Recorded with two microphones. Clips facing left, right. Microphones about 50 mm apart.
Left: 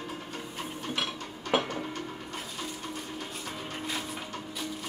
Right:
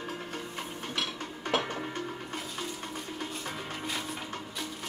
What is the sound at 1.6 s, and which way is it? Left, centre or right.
Music, centre.